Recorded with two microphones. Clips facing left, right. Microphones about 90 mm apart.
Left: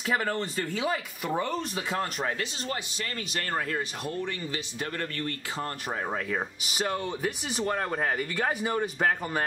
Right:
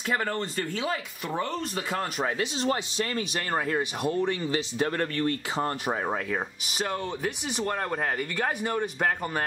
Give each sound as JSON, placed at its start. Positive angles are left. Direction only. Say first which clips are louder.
{"t": 0.0, "sound": "speech", "louder": "even", "side_deg": 5}
{"t": 2.2, "sound": "speech", "louder": "right 5 dB", "side_deg": -15}
{"t": 5.9, "sound": "speech", "louder": "right 3 dB", "side_deg": -10}
{"t": 6.7, "sound": "speech", "louder": "even", "side_deg": 0}